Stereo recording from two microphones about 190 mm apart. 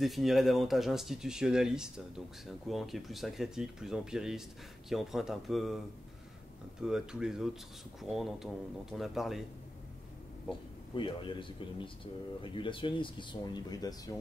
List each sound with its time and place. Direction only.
0.0 s speech: centre (ahead or behind)
6.8 s speech: 5° right (ahead or behind)
11.0 s speech: 25° left (ahead or behind)